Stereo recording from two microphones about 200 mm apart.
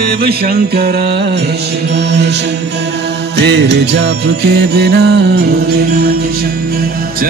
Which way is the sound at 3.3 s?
55° right (ahead or behind).